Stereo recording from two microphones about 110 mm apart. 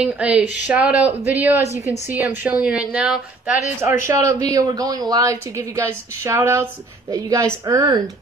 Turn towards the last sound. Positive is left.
turn(degrees=-30)  # may be behind; listen again after turning